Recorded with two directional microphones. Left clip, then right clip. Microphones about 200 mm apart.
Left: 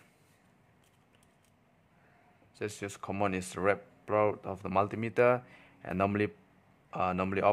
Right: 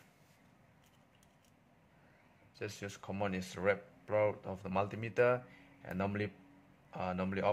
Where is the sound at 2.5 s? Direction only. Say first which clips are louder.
Left 6 dB; 20° left (ahead or behind).